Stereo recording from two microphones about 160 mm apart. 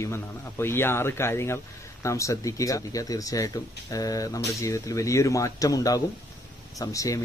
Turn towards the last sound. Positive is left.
turn(degrees=20)  # may be behind; listen again after turning